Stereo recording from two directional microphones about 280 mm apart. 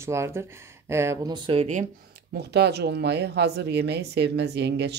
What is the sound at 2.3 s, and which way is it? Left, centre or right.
Speech, right.